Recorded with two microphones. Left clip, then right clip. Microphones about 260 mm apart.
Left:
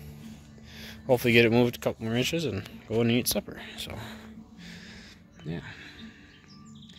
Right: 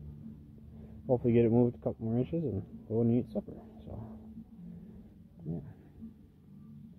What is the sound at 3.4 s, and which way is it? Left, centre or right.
Speech, left.